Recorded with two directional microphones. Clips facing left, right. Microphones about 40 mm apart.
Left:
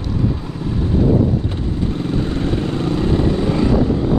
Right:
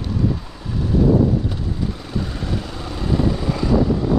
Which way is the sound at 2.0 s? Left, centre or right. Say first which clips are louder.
Left 7 dB; left.